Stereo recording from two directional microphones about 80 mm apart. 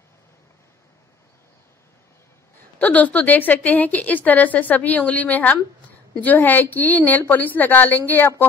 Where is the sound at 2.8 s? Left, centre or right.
Centre.